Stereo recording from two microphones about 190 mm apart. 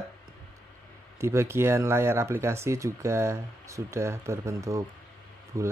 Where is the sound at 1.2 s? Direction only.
15° right (ahead or behind).